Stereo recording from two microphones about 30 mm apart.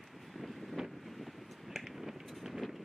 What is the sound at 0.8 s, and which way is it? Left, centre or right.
Wind noise, right.